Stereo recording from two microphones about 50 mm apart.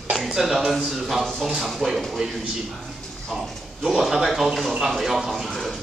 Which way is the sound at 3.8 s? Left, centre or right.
Centre.